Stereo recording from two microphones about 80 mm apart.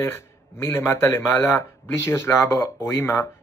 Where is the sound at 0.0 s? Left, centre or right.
Left.